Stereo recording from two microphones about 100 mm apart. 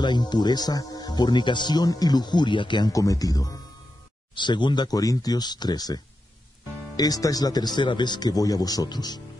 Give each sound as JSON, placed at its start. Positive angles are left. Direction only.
{"t": 0.0, "sound": "a man's voice", "side_deg": 45}
{"t": 2.9, "sound": "speech", "side_deg": 35}
{"t": 4.4, "sound": "a man's voice", "side_deg": 50}
{"t": 7.0, "sound": "speech", "side_deg": 40}